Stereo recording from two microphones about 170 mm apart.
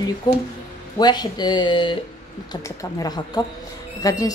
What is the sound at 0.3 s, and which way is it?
Speech, 25° left (ahead or behind).